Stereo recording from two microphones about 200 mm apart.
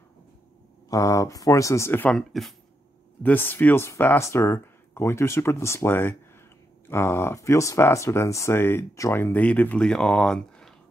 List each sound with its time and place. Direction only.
0.8 s speech: 15° left (ahead or behind)